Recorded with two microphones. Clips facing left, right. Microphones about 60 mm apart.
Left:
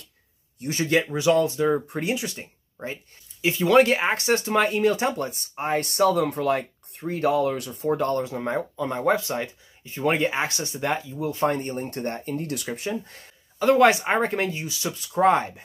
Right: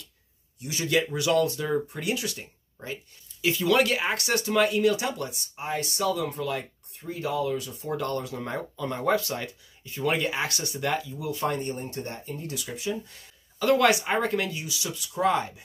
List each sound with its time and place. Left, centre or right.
0.6 s speech: left
1.1 s speech: left
7.9 s speech: left
13.6 s speech: left